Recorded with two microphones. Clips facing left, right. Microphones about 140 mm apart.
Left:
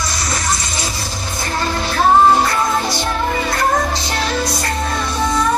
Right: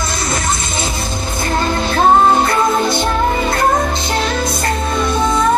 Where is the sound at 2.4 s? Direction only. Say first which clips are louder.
Right 3 dB; 55° right (ahead or behind).